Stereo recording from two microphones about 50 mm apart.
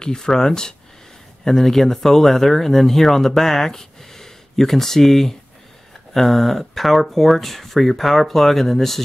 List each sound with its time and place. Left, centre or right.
0.0 s speech: centre